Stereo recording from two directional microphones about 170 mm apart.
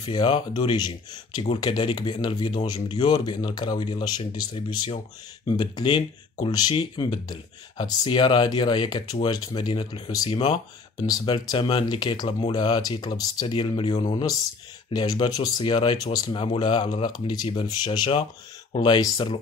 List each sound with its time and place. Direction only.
0.0 s speech: 25° left (ahead or behind)